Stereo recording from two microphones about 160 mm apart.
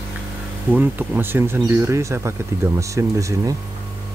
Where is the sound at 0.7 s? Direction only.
10° right (ahead or behind).